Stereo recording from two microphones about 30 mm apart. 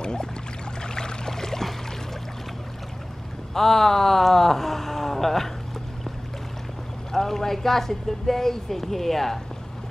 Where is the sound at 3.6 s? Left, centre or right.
Centre.